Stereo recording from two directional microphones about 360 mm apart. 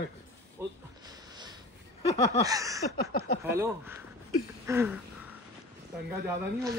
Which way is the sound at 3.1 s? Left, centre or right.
Left.